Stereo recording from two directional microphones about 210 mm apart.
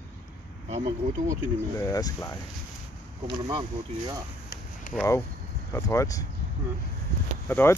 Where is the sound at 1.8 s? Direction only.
15° left (ahead or behind).